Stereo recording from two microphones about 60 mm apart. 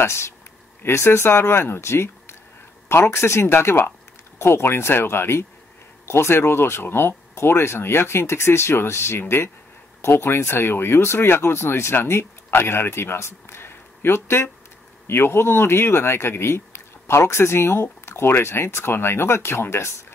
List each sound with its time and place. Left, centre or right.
0.0 s speech: left